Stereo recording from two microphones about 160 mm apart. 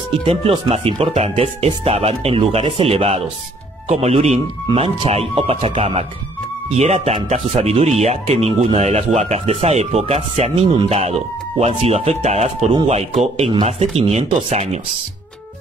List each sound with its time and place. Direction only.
0.2 s speech: 35° right (ahead or behind)